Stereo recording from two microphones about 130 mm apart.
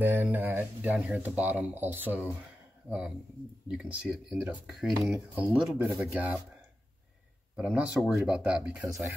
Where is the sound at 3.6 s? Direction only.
5° right (ahead or behind).